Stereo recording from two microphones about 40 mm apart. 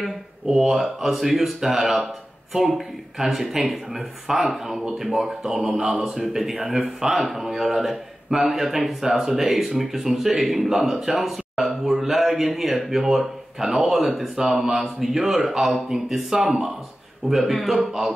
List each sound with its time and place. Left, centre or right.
0.5 s a man's voice: centre